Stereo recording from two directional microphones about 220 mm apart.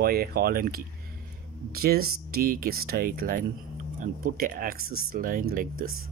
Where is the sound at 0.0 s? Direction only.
45° right (ahead or behind).